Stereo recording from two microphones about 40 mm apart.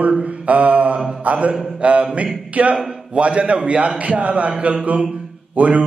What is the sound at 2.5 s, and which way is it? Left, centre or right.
A man's voice, right.